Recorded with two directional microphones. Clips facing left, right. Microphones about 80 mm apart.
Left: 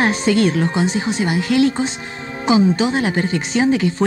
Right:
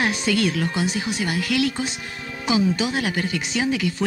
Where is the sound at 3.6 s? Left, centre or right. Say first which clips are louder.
Left 7 dB; left.